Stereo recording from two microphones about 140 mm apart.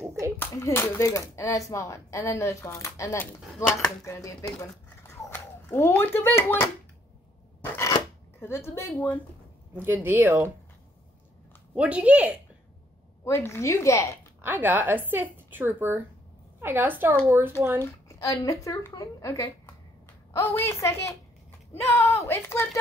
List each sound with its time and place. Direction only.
0.4 s speech: 20° left (ahead or behind)
8.4 s speech: 20° left (ahead or behind)
9.8 s a woman's voice: 15° right (ahead or behind)
11.7 s a woman's voice: 10° right (ahead or behind)
13.2 s speech: 20° left (ahead or behind)
14.4 s a woman's voice: 15° right (ahead or behind)
18.0 s speech: 25° left (ahead or behind)